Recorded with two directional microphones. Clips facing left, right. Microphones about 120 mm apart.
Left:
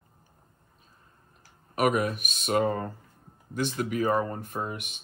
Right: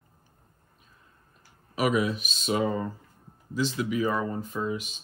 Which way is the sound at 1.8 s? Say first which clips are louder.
Even; 50° left (ahead or behind).